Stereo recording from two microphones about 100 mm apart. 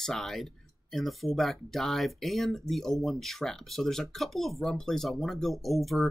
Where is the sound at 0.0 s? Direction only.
5° left (ahead or behind).